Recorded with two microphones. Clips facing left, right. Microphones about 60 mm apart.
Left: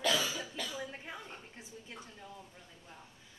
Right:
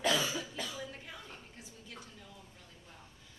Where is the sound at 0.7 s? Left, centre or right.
Left.